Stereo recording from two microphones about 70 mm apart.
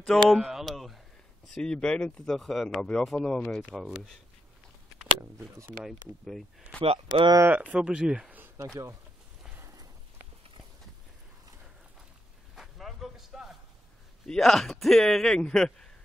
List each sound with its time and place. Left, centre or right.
0.0 s a man's voice: centre
0.4 s a sound: centre
1.5 s speech: centre
3.7 s speech: centre
5.7 s speech: centre
7.1 s speech: right
7.5 s speech: centre
12.5 s a sound: centre
14.2 s a man's voice: centre